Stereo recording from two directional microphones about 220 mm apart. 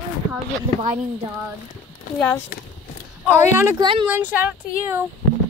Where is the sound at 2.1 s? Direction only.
10° left (ahead or behind).